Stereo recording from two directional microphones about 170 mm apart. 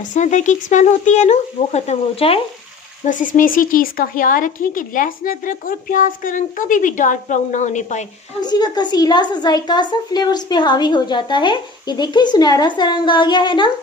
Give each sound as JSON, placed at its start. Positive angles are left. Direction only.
{"t": 0.1, "sound": "speech", "side_deg": 45}
{"t": 3.1, "sound": "speech", "side_deg": 50}
{"t": 8.4, "sound": "speech", "side_deg": 25}